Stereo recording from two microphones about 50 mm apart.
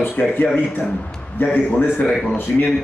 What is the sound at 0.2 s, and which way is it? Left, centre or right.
Speech, left.